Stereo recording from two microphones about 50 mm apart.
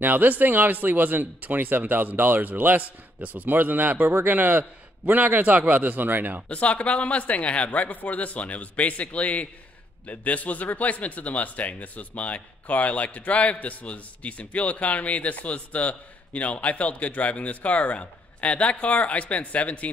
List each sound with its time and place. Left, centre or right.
0.0 s speech: right
6.5 s speech: left